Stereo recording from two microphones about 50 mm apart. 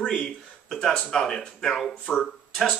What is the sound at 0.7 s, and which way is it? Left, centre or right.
Speech, centre.